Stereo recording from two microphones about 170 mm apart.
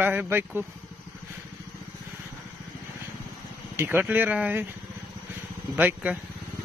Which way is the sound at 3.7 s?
10° right (ahead or behind).